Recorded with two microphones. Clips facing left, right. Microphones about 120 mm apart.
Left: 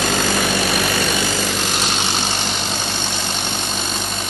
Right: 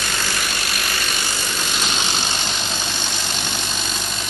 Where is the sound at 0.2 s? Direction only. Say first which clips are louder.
Left 8 dB; 50° left (ahead or behind).